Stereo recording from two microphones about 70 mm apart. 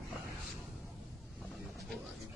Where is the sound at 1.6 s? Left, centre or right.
Centre.